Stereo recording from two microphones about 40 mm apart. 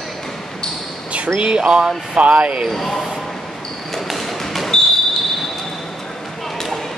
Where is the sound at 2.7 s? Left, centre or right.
Centre.